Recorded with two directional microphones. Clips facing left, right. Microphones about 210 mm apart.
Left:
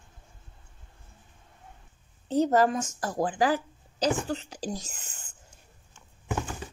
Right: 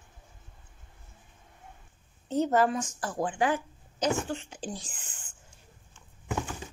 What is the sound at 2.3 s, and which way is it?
A woman's voice, 35° left (ahead or behind).